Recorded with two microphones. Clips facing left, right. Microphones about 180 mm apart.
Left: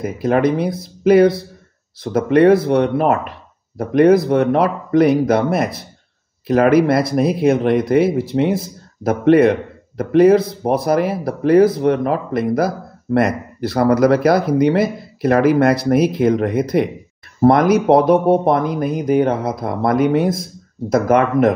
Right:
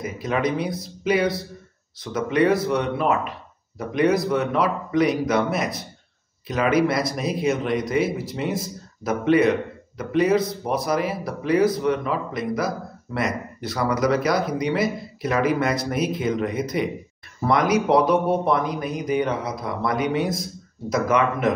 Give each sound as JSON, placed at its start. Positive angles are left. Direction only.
{"t": 0.0, "sound": "speech", "side_deg": 55}